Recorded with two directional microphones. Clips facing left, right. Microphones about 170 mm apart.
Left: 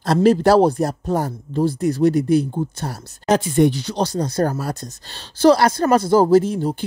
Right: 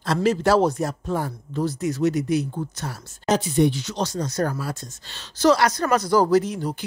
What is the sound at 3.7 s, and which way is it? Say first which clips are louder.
Speech: left 5 dB; 35° left (ahead or behind).